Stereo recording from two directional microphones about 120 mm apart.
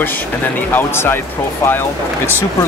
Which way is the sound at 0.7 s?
15° left (ahead or behind).